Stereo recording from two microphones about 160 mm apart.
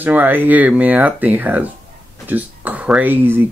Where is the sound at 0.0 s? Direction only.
10° right (ahead or behind).